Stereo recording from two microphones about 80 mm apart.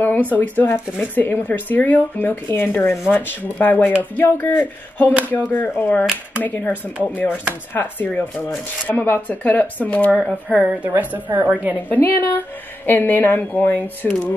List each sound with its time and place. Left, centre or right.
0.3 s speech: left
10.1 s speech: centre
11.0 s a woman's voice: right
11.9 s speech: left